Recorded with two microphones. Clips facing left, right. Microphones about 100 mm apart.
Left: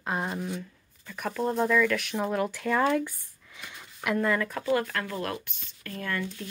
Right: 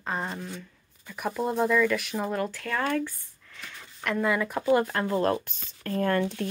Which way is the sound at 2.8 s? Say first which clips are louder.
Left 2 dB; 15° left (ahead or behind).